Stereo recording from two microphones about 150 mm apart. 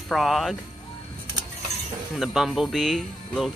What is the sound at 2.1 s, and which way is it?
Speech, centre (ahead or behind).